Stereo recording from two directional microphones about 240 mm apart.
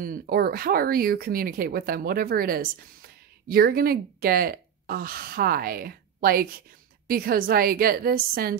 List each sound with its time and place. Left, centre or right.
0.0 s speech: right